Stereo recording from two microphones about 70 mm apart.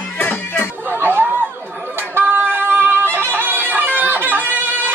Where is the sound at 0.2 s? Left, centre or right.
Left.